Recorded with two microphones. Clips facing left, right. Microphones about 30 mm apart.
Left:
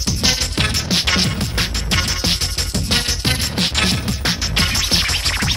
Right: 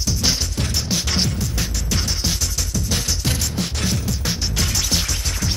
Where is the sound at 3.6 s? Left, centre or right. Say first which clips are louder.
Left 6 dB; left.